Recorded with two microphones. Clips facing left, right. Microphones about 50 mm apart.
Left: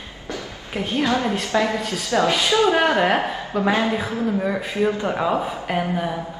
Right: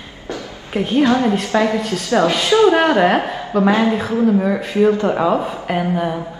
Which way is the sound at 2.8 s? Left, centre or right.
Right.